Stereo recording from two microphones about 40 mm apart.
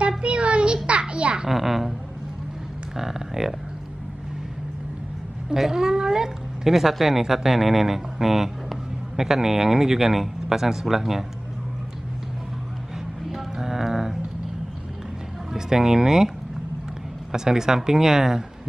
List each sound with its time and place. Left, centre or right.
0.2 s a sound: right
1.5 s a woman's voice: centre
3.0 s speech: centre
5.5 s speech: centre
13.3 s music: centre
15.5 s speech: centre
17.3 s speech: centre